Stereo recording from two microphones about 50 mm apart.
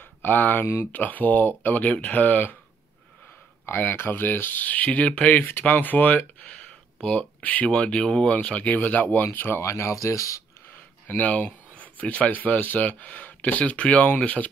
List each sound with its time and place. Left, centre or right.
0.0 s speech: left
3.6 s speech: left
5.5 s speech: left
6.5 s a sound: centre
7.7 s speech: left
8.3 s speech: left
9.6 s speech: left
10.7 s speech: left